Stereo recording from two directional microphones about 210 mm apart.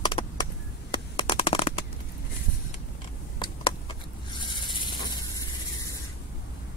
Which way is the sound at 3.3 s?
20° left (ahead or behind).